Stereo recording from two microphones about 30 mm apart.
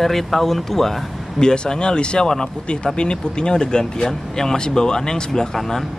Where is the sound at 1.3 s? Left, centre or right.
Left.